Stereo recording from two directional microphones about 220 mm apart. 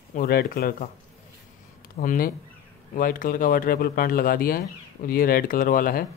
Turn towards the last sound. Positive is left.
turn(degrees=40)  # may be behind; listen again after turning